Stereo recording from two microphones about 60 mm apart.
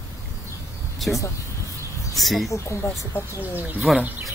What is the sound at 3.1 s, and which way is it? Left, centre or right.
Speech, left.